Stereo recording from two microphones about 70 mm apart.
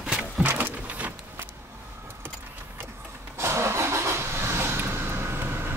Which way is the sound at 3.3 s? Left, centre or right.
Right.